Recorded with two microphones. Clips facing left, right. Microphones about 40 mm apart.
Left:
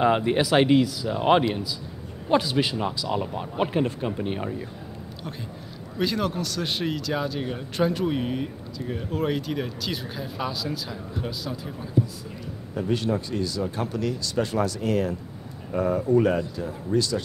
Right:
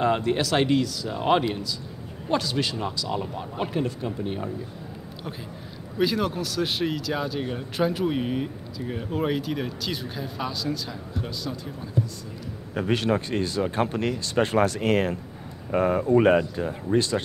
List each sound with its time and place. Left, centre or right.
0.0 s speech: centre
5.9 s speech: centre
12.7 s a man's voice: right
13.1 s speech: right